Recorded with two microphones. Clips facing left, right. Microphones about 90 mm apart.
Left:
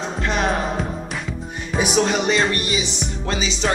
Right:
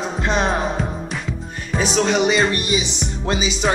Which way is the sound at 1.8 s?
10° left (ahead or behind).